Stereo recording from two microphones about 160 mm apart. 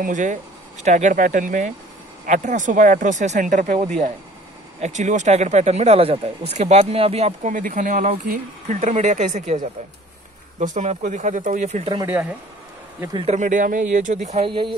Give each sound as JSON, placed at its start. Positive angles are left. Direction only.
{"t": 0.0, "sound": "speech", "side_deg": -50}
{"t": 10.6, "sound": "speech", "side_deg": -50}
{"t": 12.1, "sound": "speech", "side_deg": -10}
{"t": 13.1, "sound": "speech", "side_deg": -35}
{"t": 13.4, "sound": "speech", "side_deg": -55}